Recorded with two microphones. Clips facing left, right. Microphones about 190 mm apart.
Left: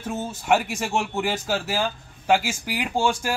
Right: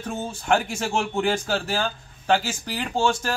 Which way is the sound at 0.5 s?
5° left (ahead or behind).